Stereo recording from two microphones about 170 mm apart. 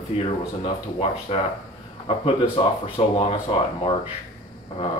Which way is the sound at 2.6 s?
40° left (ahead or behind).